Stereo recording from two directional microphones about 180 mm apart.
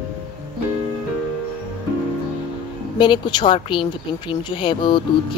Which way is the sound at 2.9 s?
25° left (ahead or behind).